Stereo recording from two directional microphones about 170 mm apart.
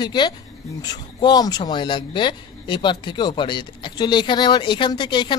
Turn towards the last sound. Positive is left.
turn(degrees=25)  # may be behind; listen again after turning